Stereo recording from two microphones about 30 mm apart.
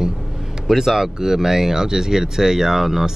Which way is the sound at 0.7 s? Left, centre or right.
Centre.